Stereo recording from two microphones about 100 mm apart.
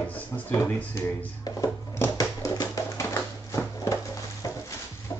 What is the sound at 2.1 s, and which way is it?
Music, 35° left (ahead or behind).